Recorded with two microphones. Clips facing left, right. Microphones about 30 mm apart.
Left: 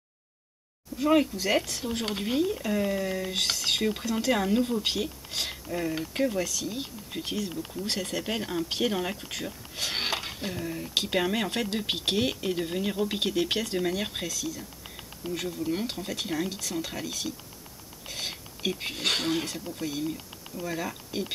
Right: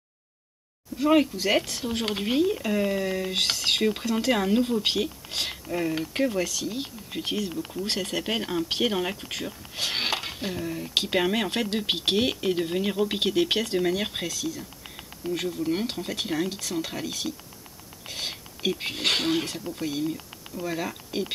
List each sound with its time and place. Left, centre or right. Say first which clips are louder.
0.9 s speech: right 2 dB; centre
9.5 s speech: right 3 dB; centre
14.6 s a sound: right 2 dB; centre
15.3 s speech: right 3 dB; centre